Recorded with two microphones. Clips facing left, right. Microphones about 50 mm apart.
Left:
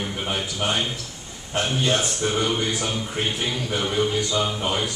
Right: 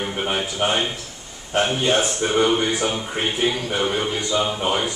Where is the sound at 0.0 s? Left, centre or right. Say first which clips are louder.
Right 3 dB; right.